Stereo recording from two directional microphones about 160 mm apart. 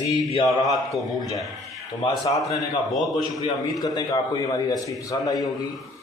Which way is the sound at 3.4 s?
25° left (ahead or behind).